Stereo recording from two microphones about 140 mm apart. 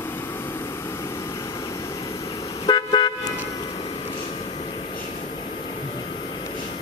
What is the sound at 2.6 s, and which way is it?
Car, 35° left (ahead or behind).